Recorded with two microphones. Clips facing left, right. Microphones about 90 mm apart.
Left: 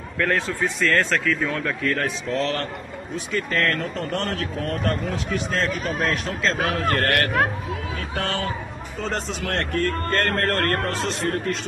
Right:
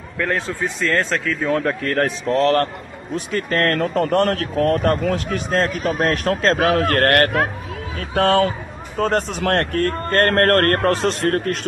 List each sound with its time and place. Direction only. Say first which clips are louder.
0.3 s speech: right 1 dB; 25° right (ahead or behind)
1.5 s speech: right 5 dB; 35° right (ahead or behind); by 11.5 s 60° right (ahead or behind)